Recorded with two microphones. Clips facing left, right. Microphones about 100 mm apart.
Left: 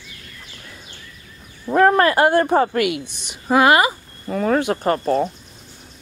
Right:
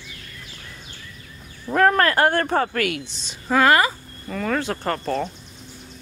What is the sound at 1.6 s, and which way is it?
Speech, 15° left (ahead or behind).